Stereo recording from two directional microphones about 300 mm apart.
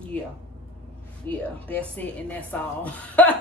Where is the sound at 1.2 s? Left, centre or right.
Centre.